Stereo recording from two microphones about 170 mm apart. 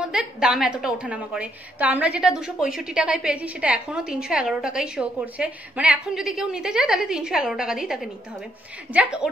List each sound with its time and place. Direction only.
0.0 s a woman's voice: 5° right (ahead or behind)